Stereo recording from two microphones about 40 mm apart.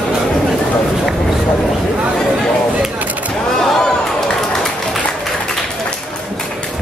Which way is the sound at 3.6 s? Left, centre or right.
Centre.